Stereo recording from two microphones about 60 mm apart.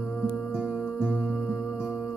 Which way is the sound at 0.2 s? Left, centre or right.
Centre.